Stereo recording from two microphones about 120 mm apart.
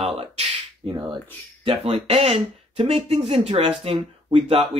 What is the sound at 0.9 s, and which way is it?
Speech, 40° right (ahead or behind).